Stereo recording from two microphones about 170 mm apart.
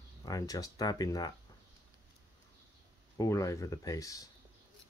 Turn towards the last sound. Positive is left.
turn(degrees=20)  # may be behind; listen again after turning